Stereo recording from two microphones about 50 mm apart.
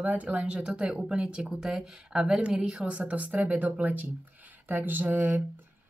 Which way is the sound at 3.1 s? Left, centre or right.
Right.